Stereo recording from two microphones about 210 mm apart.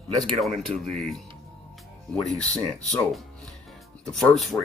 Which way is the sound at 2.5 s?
5° left (ahead or behind).